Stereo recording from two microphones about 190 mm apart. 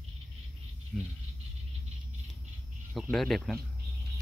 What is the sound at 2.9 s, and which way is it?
Speech, centre (ahead or behind).